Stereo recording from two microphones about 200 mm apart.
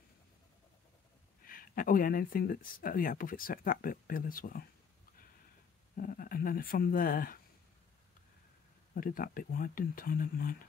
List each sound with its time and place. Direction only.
1.4 s speech: 45° left (ahead or behind)
5.9 s speech: 45° left (ahead or behind)
8.9 s speech: 45° left (ahead or behind)